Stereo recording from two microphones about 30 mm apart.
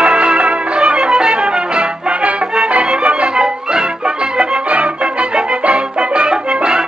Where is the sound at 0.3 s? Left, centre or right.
Centre; by 3.3 s right.